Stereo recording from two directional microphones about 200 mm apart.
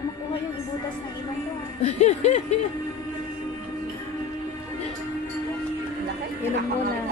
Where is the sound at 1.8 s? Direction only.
35° left (ahead or behind).